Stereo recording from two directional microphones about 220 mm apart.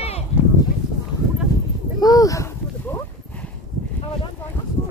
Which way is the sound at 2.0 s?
15° left (ahead or behind).